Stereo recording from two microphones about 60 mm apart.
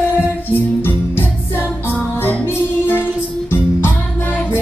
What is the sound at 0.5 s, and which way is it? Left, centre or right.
Music, left.